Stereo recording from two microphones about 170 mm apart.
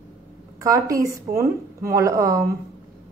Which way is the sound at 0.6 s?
20° right (ahead or behind).